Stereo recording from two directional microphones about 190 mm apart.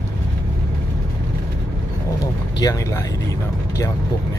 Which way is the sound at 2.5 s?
20° left (ahead or behind).